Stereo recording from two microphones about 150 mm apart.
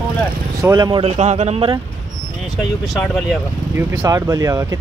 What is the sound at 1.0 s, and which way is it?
Speech, 50° right (ahead or behind).